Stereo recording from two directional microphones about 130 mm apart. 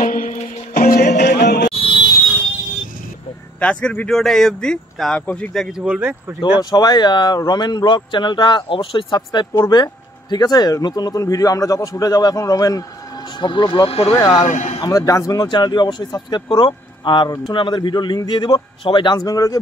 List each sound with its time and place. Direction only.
0.0 s music: 85° left
1.7 s music: 45° left (ahead or behind)
3.5 s speech: 10° left (ahead or behind)
5.9 s speech: 15° right (ahead or behind)
6.6 s a man's voice: 30° left (ahead or behind); by 14.1 s 50° left (ahead or behind)
14.1 s a man's voice: 25° left (ahead or behind)
14.4 s a man's voice: 60° left (ahead or behind)
14.8 s speech: 25° left (ahead or behind)